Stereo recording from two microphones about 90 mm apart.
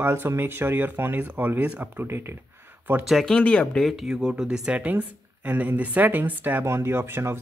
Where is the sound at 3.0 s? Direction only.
5° left (ahead or behind); by 7.4 s 25° right (ahead or behind).